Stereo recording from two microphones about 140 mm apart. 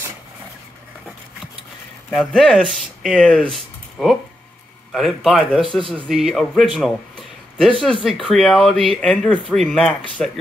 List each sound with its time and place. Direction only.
2.0 s speech: 5° left (ahead or behind)
3.5 s a sound: centre (ahead or behind)
4.9 s speech: centre (ahead or behind)
5.8 s speech: 40° right (ahead or behind)
6.0 s a man's voice: centre (ahead or behind)